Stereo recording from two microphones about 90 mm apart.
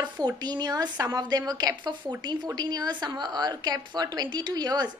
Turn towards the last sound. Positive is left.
turn(degrees=-50)  # may be behind; listen again after turning